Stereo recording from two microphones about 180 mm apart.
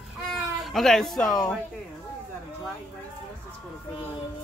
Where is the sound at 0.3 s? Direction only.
Centre (ahead or behind).